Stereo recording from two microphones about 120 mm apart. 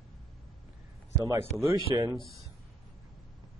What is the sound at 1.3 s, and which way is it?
Speech, 20° right (ahead or behind).